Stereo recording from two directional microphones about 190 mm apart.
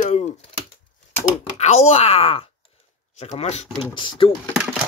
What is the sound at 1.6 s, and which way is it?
Speech, 35° left (ahead or behind).